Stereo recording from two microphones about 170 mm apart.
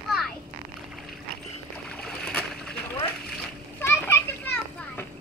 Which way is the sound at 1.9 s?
5° left (ahead or behind).